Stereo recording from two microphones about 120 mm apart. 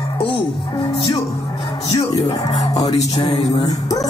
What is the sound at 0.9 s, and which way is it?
Speech, 50° left (ahead or behind).